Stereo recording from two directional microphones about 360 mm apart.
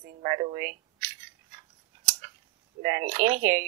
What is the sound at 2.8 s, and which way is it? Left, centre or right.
Speech, centre.